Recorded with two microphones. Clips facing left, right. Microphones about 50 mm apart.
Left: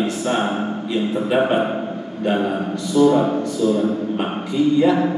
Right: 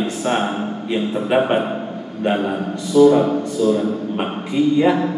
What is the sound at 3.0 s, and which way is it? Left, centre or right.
Speech, centre.